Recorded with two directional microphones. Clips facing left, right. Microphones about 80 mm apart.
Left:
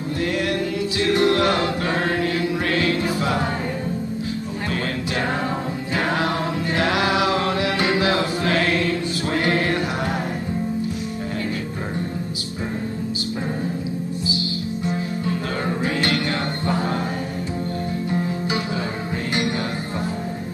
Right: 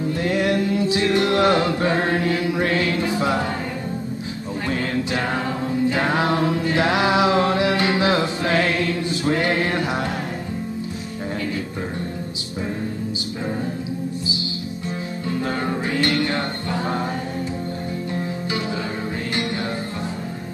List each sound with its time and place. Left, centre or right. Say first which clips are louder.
0.2 s chant: right 2 dB; right
2.5 s music: even; right
5.9 s mantra: left 2 dB; right
7.9 s music: right 1 dB; right
9.3 s a sound: even; right